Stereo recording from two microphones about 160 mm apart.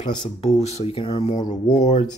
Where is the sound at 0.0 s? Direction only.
45° left (ahead or behind); by 1.5 s 25° left (ahead or behind).